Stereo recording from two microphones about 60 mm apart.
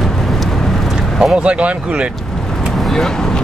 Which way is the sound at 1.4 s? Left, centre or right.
Right.